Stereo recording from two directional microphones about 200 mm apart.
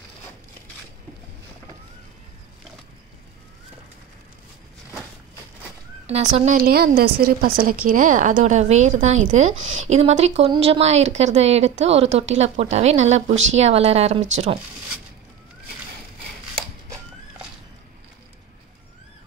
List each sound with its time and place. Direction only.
6.0 s a woman's voice: 30° right (ahead or behind)